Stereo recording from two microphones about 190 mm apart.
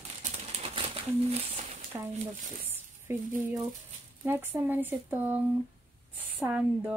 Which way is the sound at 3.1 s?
10° right (ahead or behind).